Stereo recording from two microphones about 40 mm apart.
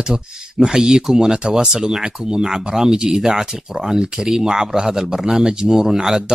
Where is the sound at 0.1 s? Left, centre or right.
Centre.